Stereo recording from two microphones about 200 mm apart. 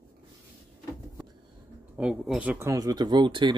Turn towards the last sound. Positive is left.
turn(degrees=-25)  # may be behind; listen again after turning